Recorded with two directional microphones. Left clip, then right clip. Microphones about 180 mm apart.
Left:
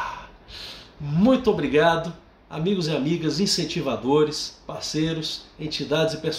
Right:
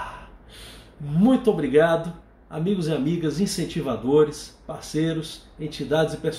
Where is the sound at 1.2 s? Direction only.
5° left (ahead or behind).